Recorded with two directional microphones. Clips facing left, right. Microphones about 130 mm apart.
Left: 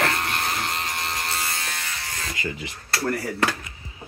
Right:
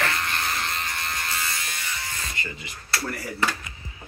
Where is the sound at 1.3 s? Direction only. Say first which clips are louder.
Left 2 dB; 55° left (ahead or behind).